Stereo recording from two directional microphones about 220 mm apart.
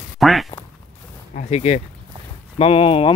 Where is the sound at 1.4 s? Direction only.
30° left (ahead or behind).